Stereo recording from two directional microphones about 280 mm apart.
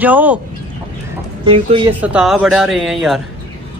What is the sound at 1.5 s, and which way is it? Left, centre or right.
Speech, centre.